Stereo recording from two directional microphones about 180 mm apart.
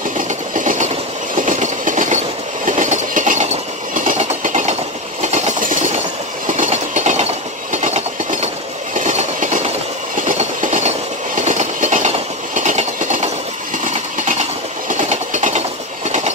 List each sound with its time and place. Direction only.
0.6 s train: 45° right (ahead or behind)
14.9 s train: 45° right (ahead or behind)